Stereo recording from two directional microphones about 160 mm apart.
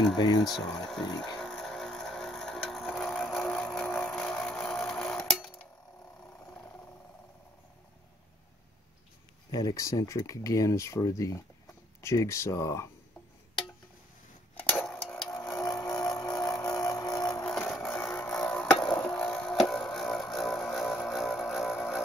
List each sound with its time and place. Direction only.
0.2 s speech: 25° left (ahead or behind)
0.5 s speech: centre (ahead or behind)
1.0 s speech: 25° left (ahead or behind)
1.4 s a sound: centre (ahead or behind)
9.5 s speech: 25° left (ahead or behind)
14.5 s a sound: 10° left (ahead or behind)
15.6 s vehicle: 20° left (ahead or behind)
16.7 s music: 25° left (ahead or behind)
17.5 s music: 5° left (ahead or behind)
18.2 s chop: 5° left (ahead or behind)